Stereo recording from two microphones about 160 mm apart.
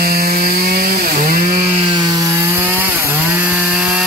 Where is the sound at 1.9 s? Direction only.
25° right (ahead or behind).